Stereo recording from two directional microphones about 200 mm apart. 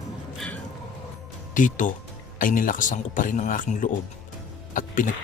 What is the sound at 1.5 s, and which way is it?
Speech, 40° left (ahead or behind).